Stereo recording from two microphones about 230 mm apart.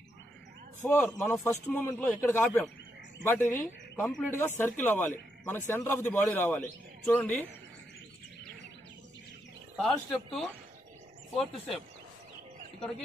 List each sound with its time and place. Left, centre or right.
0.8 s a man's voice: centre
9.8 s a man's voice: centre